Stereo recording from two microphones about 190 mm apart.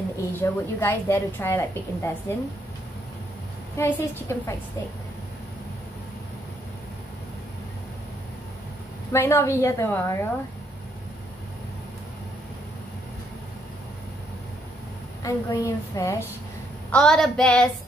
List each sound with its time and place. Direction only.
0.4 s a woman's voice: 10° left (ahead or behind)
3.7 s a woman's voice: 15° left (ahead or behind)
9.1 s a woman's voice: 15° left (ahead or behind)
15.2 s a woman's voice: 15° left (ahead or behind)
16.9 s a woman's voice: 5° left (ahead or behind)